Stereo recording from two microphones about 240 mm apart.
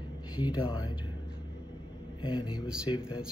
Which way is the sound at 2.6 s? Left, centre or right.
Centre.